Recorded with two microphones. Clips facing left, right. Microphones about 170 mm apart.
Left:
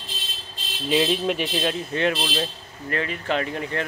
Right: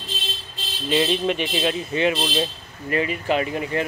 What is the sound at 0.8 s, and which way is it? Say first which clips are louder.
Speech: right 1 dB; centre (ahead or behind).